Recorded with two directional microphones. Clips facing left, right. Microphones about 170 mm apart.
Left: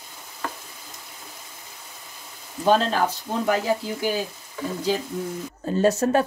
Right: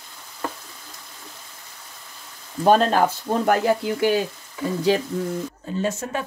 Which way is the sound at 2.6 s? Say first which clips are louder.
Right 3 dB; 55° right (ahead or behind).